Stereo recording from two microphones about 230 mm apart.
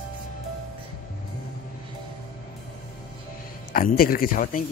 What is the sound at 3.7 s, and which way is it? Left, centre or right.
Speech, left.